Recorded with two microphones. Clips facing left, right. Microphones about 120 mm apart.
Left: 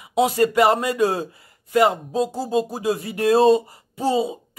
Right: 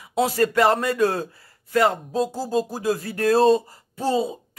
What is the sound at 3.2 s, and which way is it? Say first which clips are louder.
A man's voice: left 2 dB; 5° left (ahead or behind).